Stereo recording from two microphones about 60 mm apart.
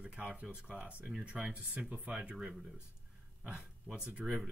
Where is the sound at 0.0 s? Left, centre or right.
Centre.